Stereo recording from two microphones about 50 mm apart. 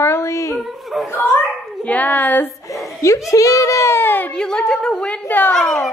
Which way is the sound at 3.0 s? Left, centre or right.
Left.